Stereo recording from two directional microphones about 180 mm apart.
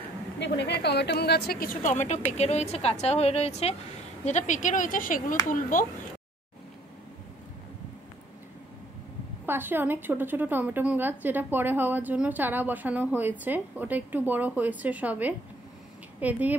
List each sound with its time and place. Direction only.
0.4 s a woman's voice: 70° left (ahead or behind); by 5.9 s 50° left (ahead or behind)
9.5 s a woman's voice: 10° right (ahead or behind)